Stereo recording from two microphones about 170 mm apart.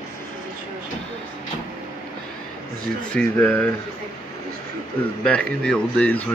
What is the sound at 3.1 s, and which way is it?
Speech, 5° left (ahead or behind).